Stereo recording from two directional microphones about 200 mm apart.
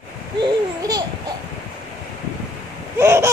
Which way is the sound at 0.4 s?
20° right (ahead or behind).